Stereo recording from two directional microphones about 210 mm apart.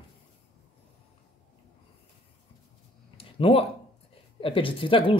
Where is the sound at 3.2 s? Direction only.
25° left (ahead or behind).